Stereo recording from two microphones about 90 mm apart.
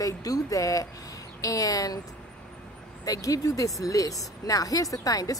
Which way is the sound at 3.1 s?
40° left (ahead or behind).